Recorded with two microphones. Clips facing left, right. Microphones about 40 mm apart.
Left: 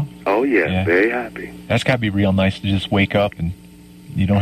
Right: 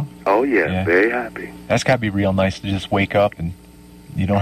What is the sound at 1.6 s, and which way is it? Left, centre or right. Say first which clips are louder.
Speech: right 1 dB; left.